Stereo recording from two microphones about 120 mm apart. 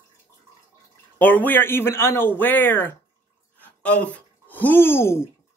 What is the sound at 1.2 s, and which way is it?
A man's voice, 15° left (ahead or behind).